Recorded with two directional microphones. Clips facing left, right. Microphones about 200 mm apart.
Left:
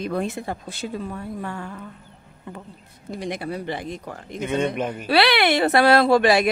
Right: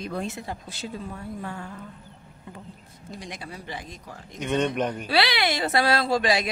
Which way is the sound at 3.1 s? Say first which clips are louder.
Left 10 dB; 60° left (ahead or behind).